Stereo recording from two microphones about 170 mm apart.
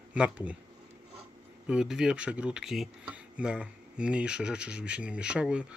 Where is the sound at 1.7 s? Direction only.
5° right (ahead or behind).